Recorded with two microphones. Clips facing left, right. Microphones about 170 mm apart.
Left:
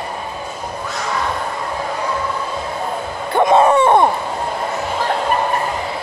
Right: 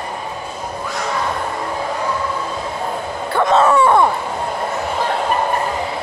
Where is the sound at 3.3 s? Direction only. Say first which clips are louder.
Left 2 dB; 15° left (ahead or behind).